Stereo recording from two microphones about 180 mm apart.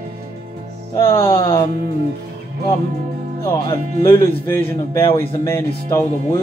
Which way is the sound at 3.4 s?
15° left (ahead or behind).